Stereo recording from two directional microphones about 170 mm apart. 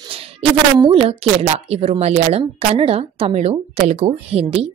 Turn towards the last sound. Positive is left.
turn(degrees=-35)  # may be behind; listen again after turning